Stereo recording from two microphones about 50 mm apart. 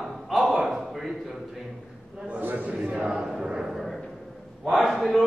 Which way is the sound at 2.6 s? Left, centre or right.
Right.